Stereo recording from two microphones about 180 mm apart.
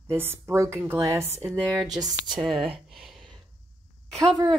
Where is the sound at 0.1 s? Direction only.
15° right (ahead or behind).